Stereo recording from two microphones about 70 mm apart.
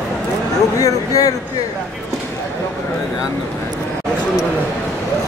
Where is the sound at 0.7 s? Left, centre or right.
Left.